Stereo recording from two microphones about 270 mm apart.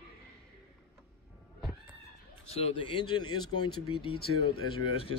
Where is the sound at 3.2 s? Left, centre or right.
Left.